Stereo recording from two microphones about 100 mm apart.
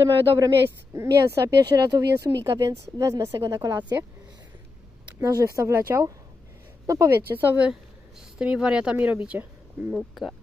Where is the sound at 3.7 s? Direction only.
50° right (ahead or behind).